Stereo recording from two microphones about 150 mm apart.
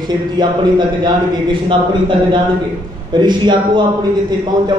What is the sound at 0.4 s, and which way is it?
A man's voice, 30° right (ahead or behind).